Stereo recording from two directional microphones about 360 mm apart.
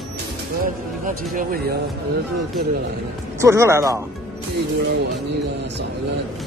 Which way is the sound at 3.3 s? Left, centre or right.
Centre.